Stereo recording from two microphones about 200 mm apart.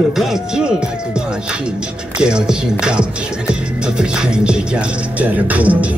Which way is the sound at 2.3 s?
5° right (ahead or behind).